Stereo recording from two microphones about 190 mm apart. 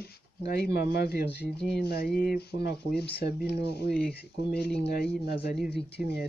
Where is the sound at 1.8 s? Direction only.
55° left (ahead or behind).